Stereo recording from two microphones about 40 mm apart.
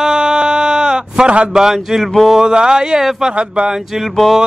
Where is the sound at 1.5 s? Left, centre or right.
Centre.